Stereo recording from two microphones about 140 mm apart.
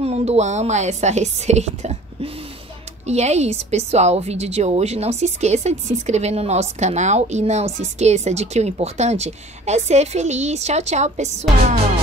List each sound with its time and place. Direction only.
0.0 s a woman's voice: 45° right (ahead or behind)